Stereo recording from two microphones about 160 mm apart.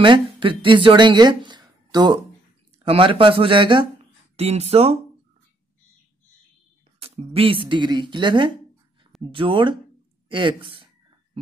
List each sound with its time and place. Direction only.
0.0 s speech: 30° right (ahead or behind)
7.0 s speech: 35° right (ahead or behind)